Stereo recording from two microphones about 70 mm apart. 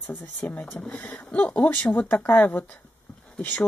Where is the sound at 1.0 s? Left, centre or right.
Left.